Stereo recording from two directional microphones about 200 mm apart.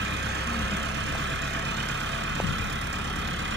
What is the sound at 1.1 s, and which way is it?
Vehicle, 65° right (ahead or behind).